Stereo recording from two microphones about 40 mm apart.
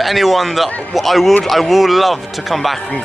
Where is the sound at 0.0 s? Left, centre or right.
Centre.